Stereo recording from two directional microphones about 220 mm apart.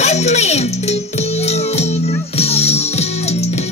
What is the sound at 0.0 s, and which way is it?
Music, 30° left (ahead or behind).